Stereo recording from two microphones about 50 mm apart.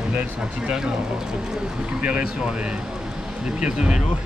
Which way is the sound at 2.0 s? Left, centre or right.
Right.